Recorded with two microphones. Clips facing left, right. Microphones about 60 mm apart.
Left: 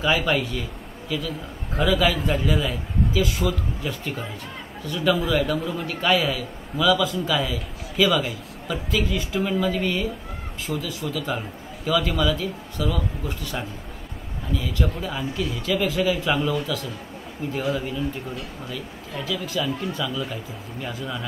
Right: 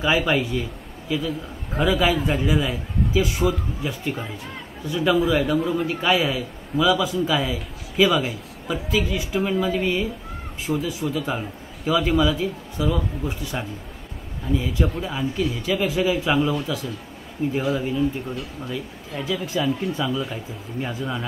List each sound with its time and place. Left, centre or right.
0.0 s a man's voice: centre
3.1 s speech: centre
3.8 s a man's voice: centre
11.3 s a man's voice: centre